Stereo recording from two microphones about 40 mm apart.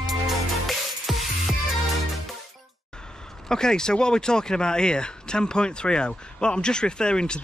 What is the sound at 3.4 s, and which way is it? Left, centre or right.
Speech, centre.